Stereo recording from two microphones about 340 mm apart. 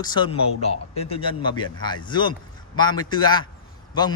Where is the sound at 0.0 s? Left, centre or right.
Centre.